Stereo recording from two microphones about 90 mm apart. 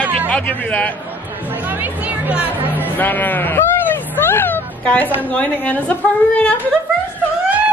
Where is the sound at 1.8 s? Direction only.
20° right (ahead or behind).